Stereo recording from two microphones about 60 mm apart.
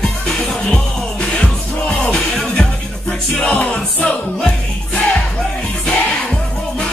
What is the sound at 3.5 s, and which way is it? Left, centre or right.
Music, left.